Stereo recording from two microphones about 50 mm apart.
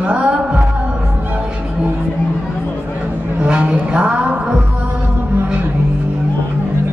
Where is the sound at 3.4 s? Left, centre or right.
Right.